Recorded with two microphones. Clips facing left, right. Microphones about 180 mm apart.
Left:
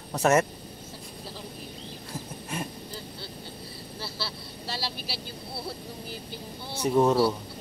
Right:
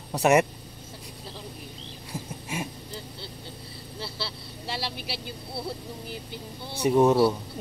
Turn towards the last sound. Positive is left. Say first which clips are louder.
# right 2 dB
turn(degrees=-10)  # may be behind; listen again after turning